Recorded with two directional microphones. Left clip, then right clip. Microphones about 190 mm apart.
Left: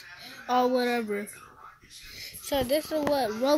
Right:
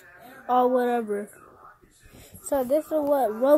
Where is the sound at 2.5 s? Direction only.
20° left (ahead or behind).